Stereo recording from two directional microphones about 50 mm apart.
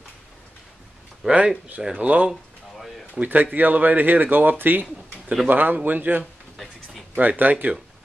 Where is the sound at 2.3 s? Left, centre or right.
Centre.